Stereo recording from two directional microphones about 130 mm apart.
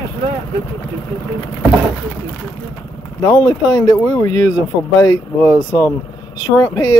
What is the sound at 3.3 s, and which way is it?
Speech, 25° left (ahead or behind).